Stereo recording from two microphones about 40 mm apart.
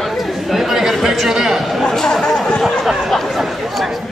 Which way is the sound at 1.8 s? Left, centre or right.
Centre.